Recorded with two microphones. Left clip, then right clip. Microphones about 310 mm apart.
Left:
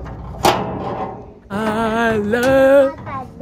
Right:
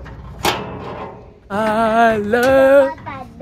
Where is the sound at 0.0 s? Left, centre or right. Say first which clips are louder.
Left 4 dB; left.